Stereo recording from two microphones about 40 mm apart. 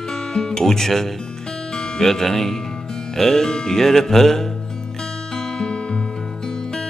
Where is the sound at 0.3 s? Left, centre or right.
Centre.